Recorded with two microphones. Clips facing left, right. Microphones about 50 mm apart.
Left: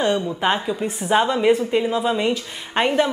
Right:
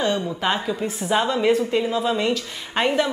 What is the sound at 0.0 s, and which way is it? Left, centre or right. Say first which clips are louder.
A woman's voice: left 2 dB; centre.